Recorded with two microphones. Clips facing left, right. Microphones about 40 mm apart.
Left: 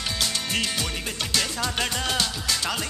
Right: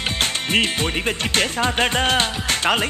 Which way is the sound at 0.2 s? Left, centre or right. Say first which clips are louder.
Right 8 dB; right.